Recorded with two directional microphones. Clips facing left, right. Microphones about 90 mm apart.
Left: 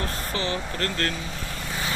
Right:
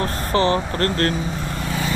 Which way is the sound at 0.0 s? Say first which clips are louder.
Right 9 dB; 40° right (ahead or behind).